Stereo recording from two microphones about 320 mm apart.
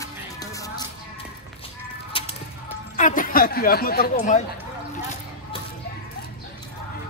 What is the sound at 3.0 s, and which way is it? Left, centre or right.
Speech, left.